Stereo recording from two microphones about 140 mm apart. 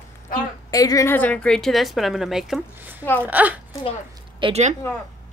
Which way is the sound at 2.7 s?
15° right (ahead or behind).